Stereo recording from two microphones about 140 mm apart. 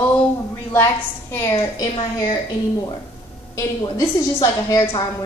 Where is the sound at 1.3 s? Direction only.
25° left (ahead or behind).